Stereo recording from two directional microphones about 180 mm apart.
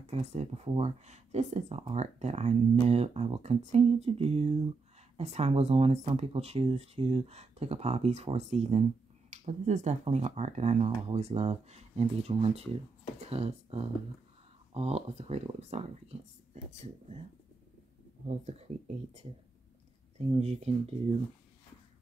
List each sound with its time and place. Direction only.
0.0 s speech: 35° right (ahead or behind)
18.2 s speech: 40° right (ahead or behind)
20.2 s speech: 35° right (ahead or behind)